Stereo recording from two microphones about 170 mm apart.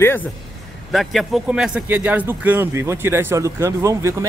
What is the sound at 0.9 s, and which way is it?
A man's voice, centre (ahead or behind).